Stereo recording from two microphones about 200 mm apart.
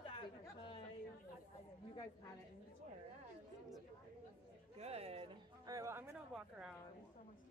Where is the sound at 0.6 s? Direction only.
25° left (ahead or behind).